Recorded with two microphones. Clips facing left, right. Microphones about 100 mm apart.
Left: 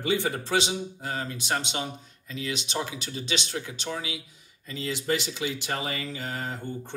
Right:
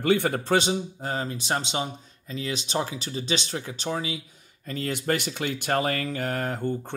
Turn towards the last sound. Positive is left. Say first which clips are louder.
# right 6 dB
turn(degrees=-60)  # may be behind; listen again after turning